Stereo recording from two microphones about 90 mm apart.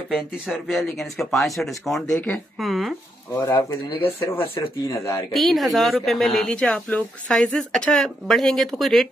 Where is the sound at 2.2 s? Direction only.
20° left (ahead or behind).